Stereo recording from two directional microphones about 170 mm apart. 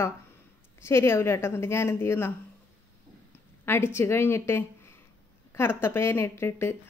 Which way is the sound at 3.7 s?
15° left (ahead or behind).